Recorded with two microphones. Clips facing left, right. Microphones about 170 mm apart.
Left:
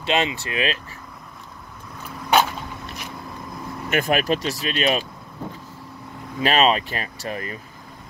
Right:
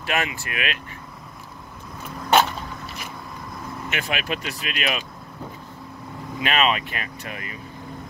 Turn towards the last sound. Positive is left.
turn(degrees=35)  # may be behind; listen again after turning